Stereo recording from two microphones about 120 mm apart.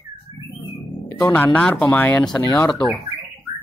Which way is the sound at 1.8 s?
15° left (ahead or behind).